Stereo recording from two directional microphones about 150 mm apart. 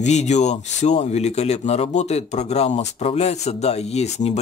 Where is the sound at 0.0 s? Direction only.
50° left (ahead or behind).